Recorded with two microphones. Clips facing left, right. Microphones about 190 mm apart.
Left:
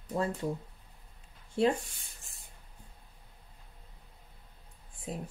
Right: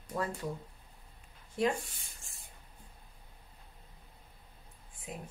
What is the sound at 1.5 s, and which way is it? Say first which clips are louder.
Speech: left 4 dB; 30° left (ahead or behind).